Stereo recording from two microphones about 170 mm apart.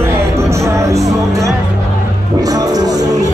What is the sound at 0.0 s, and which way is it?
Music, 15° right (ahead or behind).